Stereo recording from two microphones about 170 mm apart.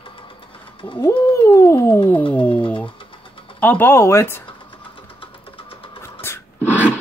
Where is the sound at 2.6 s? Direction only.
30° left (ahead or behind).